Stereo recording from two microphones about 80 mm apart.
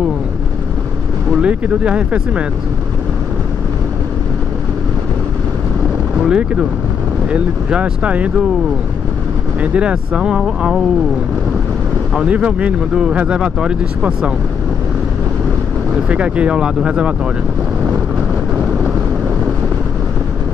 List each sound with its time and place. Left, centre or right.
1.4 s speech: centre
6.2 s speech: centre
9.6 s speech: centre
12.2 s speech: centre
16.1 s speech: centre